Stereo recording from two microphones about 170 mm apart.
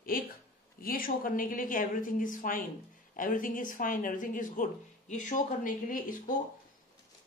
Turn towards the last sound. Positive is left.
turn(degrees=55)  # may be behind; listen again after turning